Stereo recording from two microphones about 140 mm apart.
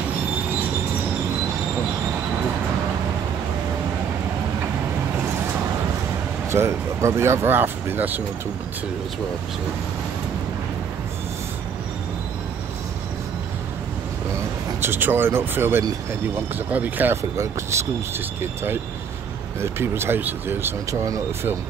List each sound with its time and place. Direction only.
6.5 s speech: 20° right (ahead or behind)
14.3 s speech: 15° right (ahead or behind)